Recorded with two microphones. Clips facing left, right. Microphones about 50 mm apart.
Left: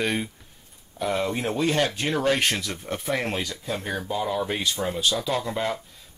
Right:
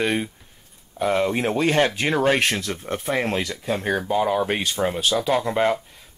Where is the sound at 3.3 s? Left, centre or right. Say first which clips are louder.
Right 5 dB; right.